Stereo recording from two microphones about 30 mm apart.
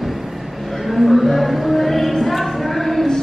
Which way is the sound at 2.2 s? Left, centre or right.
Centre.